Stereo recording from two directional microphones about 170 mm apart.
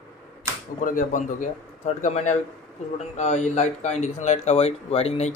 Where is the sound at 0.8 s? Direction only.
50° left (ahead or behind).